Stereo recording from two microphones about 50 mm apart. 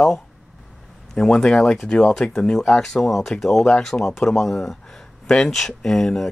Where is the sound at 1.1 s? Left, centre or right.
Centre.